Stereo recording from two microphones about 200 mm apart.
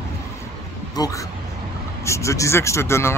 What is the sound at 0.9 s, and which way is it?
Speech, 20° left (ahead or behind).